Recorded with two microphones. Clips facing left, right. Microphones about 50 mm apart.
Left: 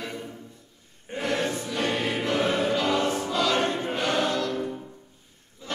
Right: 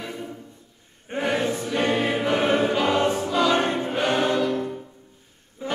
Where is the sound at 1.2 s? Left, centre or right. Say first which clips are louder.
Right 3 dB; centre.